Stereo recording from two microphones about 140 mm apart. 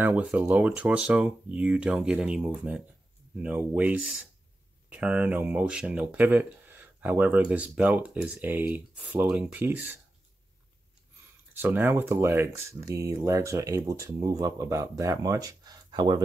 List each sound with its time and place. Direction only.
0.0 s speech: 10° right (ahead or behind)
11.5 s speech: 15° right (ahead or behind); by 16.2 s 30° right (ahead or behind)